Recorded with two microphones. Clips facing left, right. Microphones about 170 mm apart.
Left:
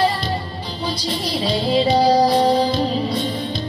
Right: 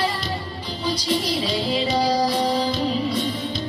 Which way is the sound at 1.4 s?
35° left (ahead or behind).